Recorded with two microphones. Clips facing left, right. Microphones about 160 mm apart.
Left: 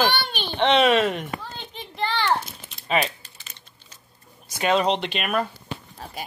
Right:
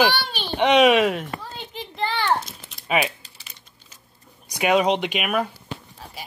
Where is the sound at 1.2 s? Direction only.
5° right (ahead or behind).